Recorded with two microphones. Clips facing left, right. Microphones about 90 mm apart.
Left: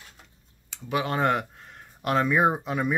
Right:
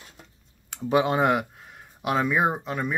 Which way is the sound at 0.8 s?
20° right (ahead or behind).